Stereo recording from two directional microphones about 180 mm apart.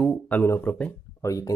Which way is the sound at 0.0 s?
5° left (ahead or behind).